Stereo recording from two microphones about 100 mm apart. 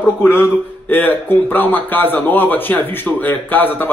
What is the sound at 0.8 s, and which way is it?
Speech, 20° left (ahead or behind).